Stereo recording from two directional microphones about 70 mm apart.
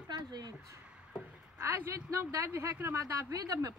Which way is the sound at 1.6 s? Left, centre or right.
Right.